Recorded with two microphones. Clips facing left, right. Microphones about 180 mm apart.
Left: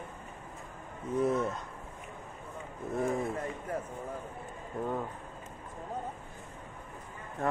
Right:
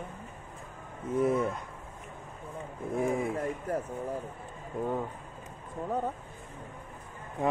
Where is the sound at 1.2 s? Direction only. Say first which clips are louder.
Right 2 dB; 10° right (ahead or behind).